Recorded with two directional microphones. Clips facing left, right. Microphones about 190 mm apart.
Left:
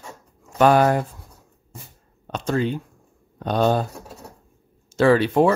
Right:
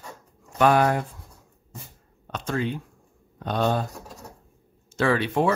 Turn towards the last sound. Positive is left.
turn(degrees=40)  # may be behind; listen again after turning